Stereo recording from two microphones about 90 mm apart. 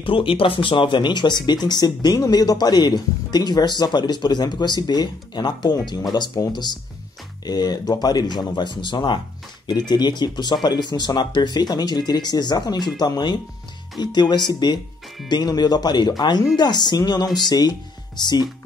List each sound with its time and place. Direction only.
0.0 s speech: 80° left; by 18.5 s 55° left (ahead or behind)